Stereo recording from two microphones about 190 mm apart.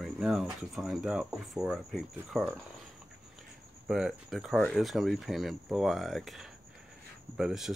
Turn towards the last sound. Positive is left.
turn(degrees=0)  # may be behind; listen again after turning